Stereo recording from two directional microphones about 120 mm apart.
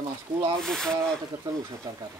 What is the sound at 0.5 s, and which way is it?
Speech, 5° left (ahead or behind).